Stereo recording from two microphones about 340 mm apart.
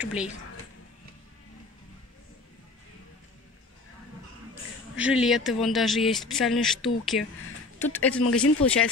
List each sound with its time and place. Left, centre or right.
0.0 s speech: centre
4.9 s speech: centre
8.2 s speech: left